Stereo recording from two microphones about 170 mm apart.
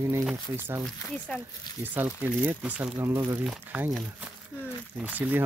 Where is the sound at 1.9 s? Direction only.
10° right (ahead or behind).